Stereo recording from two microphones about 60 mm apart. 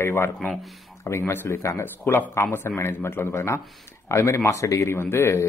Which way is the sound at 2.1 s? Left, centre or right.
Left.